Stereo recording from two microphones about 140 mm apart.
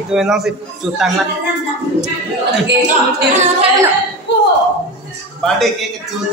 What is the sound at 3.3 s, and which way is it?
Music, 55° right (ahead or behind).